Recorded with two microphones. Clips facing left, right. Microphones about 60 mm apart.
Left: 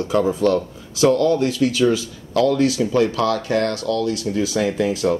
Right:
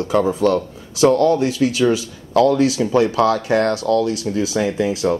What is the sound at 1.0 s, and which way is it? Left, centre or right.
Speech, right.